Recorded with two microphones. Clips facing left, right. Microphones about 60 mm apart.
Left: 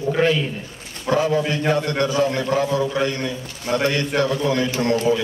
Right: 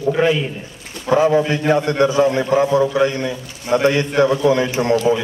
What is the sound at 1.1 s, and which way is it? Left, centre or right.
A man's voice, right.